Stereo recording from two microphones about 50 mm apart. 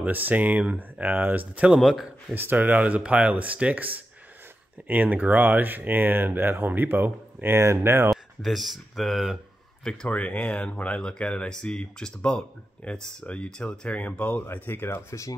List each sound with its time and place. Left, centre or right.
0.0 s speech: right
1.8 s speech: centre
2.3 s speech: right
7.4 s speech: right
8.1 s speech: centre
10.0 s speech: left
15.0 s speech: left